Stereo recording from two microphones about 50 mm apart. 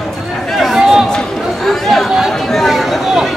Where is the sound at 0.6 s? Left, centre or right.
Centre.